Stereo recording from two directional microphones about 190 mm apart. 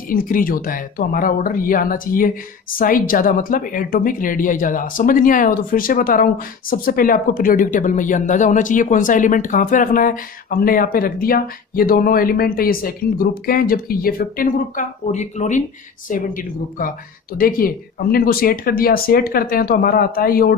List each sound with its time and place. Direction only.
0.1 s speech: 45° left (ahead or behind)